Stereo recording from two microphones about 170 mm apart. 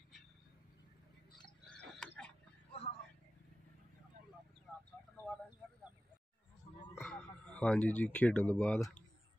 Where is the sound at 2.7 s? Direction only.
35° left (ahead or behind).